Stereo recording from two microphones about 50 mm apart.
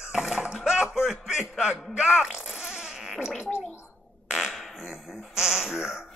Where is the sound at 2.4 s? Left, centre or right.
Centre.